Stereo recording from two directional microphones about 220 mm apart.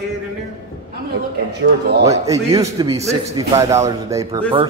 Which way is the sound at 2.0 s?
15° right (ahead or behind).